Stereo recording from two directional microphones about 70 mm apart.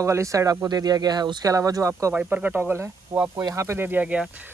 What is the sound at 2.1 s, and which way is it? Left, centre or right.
Speech, centre.